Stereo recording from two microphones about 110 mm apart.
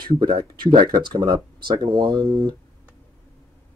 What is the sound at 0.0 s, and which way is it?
Speech, 45° right (ahead or behind).